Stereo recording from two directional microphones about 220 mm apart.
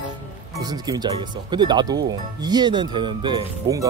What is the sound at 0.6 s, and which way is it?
Speech, 20° right (ahead or behind).